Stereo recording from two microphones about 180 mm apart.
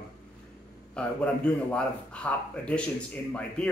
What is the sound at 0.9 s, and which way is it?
A man's voice, 5° left (ahead or behind).